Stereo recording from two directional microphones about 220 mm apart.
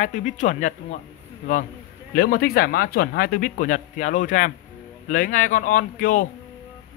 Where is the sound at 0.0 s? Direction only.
35° left (ahead or behind).